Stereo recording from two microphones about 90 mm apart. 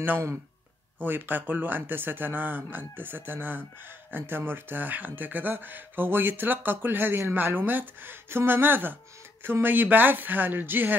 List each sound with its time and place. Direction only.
0.0 s speech: 25° right (ahead or behind)